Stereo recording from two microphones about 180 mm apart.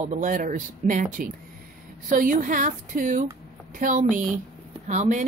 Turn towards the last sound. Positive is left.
turn(degrees=-45)  # may be behind; listen again after turning